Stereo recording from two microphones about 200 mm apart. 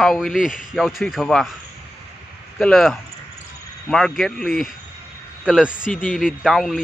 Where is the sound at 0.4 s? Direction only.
40° left (ahead or behind).